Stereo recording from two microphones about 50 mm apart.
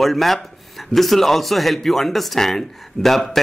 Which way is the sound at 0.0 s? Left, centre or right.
Centre.